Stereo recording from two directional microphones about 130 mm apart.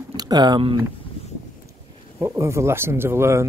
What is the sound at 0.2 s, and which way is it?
Speech, 35° right (ahead or behind).